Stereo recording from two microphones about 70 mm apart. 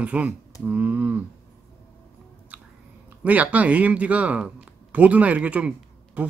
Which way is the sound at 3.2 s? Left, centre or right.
Right.